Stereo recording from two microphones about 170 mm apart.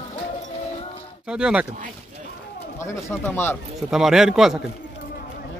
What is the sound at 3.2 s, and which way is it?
Speech, 10° left (ahead or behind).